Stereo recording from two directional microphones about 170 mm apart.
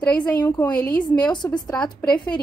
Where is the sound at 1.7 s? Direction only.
5° left (ahead or behind).